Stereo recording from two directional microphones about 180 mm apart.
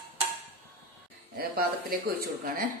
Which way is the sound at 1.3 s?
55° right (ahead or behind).